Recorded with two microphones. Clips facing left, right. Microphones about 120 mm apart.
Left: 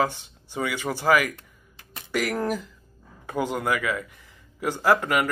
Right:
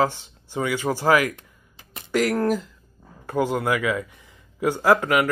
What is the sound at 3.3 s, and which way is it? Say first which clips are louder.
Speech: right 3 dB; 10° right (ahead or behind).